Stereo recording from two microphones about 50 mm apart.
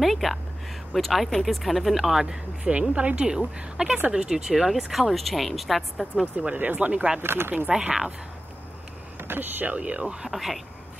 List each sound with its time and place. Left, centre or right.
0.0 s speech: centre
2.8 s a woman's voice: centre
6.3 s speech: right
7.2 s speech: right
9.3 s speech: right
9.8 s speech: right
10.3 s speech: centre